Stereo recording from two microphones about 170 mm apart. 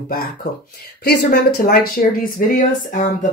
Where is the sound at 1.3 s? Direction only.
60° left (ahead or behind).